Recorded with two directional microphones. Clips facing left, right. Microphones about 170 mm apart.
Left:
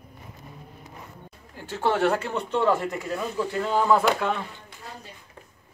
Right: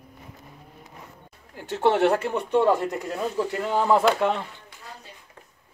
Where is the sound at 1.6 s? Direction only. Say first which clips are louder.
Right 3 dB; 20° right (ahead or behind).